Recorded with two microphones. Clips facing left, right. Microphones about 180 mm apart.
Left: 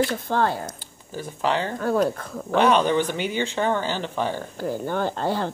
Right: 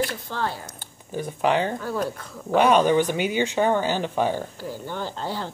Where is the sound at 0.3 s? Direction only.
55° left (ahead or behind).